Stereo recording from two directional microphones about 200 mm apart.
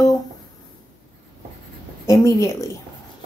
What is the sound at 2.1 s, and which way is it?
Speech, 15° left (ahead or behind).